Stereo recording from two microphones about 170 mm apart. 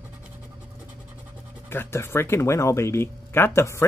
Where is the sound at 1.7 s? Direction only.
15° left (ahead or behind).